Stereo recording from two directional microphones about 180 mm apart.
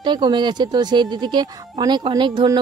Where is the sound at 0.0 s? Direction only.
25° right (ahead or behind).